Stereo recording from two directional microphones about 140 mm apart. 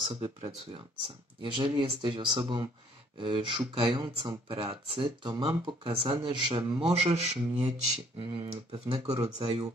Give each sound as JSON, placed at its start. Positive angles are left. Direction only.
{"t": 0.0, "sound": "speech", "side_deg": -40}
{"t": 8.2, "sound": "speech", "side_deg": -40}